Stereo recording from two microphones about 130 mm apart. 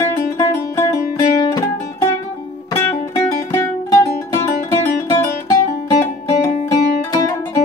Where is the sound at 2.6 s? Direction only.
20° left (ahead or behind).